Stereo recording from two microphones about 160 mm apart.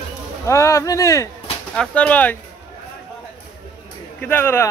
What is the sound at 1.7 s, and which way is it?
Speech, 5° left (ahead or behind).